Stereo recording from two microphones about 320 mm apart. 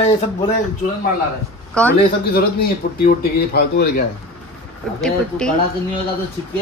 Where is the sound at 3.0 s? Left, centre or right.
Left.